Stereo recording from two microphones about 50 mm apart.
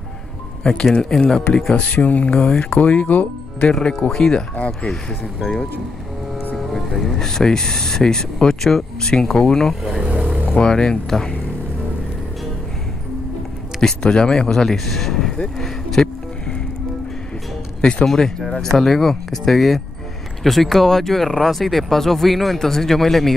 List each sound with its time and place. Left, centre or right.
1.1 s speech: centre
1.8 s speech: left
3.8 s speech: left
6.5 s speech: centre
10.0 s vehicle: right
10.5 s speech: centre
13.7 s speech: centre
15.6 s music: centre
18.0 s speech: centre